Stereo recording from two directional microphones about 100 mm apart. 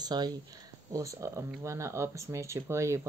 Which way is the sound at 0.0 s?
45° right (ahead or behind).